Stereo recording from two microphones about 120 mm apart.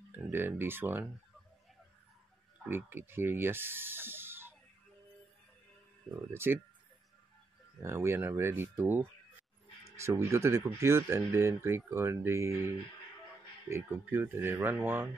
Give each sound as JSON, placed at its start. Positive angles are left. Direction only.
{"t": 0.1, "sound": "speech", "side_deg": -15}
{"t": 2.7, "sound": "speech", "side_deg": -20}
{"t": 6.3, "sound": "speech", "side_deg": -20}
{"t": 7.8, "sound": "speech", "side_deg": -20}